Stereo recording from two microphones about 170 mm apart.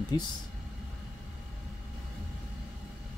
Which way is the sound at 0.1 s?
25° left (ahead or behind).